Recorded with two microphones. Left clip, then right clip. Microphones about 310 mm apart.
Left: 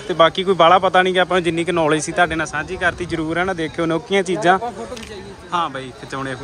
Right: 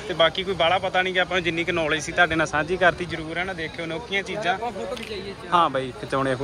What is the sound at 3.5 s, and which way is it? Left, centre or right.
Speech, left.